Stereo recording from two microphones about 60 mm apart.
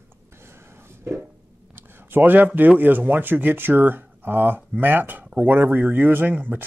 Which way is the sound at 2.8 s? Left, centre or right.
Right.